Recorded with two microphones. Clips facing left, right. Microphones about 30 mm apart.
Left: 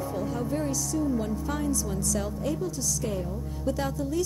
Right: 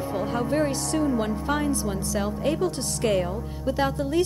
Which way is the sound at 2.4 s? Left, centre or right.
Right.